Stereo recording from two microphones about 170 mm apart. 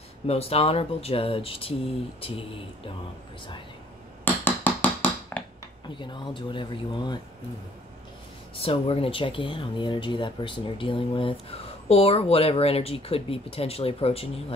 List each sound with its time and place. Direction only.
0.3 s speech: 35° left (ahead or behind)
4.2 s a sound: 10° left (ahead or behind)
5.4 s dishes: 10° left (ahead or behind)
5.9 s speech: 30° left (ahead or behind)
8.5 s speech: 35° left (ahead or behind)